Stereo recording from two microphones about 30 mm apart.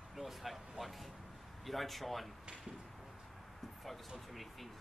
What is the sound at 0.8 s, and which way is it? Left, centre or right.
Speech, centre.